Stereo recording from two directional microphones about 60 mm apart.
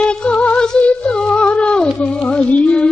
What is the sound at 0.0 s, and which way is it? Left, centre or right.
Music, centre.